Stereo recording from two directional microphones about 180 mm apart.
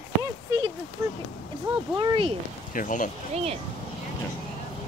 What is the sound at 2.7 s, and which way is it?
Speech, 45° left (ahead or behind).